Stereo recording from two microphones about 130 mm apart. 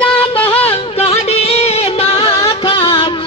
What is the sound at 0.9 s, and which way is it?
Music, 50° left (ahead or behind).